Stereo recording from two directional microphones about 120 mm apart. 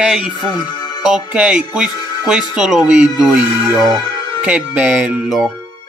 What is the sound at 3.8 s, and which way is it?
Speech, 35° left (ahead or behind).